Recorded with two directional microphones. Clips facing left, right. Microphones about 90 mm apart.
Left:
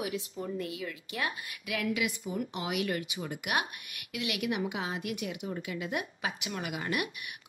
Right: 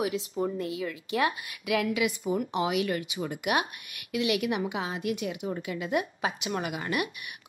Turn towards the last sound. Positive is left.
turn(degrees=-30)  # may be behind; listen again after turning